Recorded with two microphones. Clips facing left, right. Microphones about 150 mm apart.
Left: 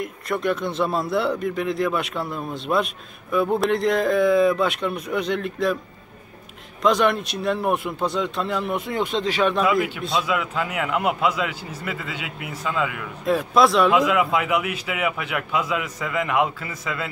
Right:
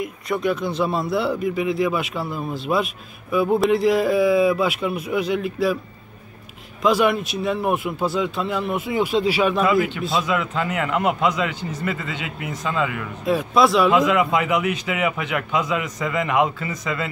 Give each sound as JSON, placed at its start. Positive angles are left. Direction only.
{"t": 0.0, "sound": "speech", "side_deg": 0}
{"t": 6.8, "sound": "speech", "side_deg": -5}